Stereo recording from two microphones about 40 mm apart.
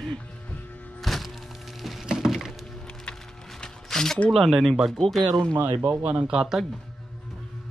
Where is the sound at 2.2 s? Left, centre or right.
Centre.